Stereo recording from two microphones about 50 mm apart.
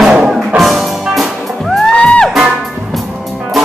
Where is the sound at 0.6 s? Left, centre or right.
Centre.